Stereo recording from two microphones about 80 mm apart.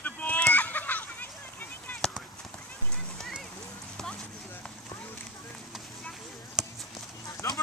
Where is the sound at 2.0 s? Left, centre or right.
Centre.